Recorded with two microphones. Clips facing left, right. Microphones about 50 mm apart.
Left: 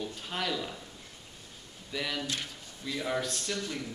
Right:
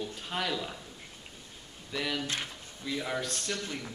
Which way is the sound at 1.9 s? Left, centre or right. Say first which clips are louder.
Right 1 dB; centre.